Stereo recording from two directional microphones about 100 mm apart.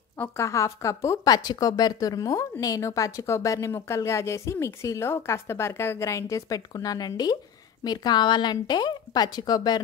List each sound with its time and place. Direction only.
0.4 s a woman's voice: 30° left (ahead or behind)